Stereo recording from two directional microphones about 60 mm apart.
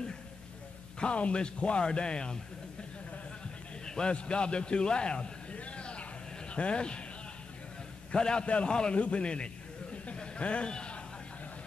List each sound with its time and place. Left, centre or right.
0.9 s a man's voice: centre
3.8 s a man's voice: centre
8.1 s a man's voice: centre
10.0 s a sound: centre